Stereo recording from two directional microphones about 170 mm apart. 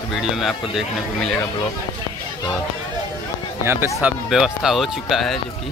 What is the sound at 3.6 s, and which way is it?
A man's voice, 15° right (ahead or behind).